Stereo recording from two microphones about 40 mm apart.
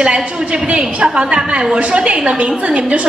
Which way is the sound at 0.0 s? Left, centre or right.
Right.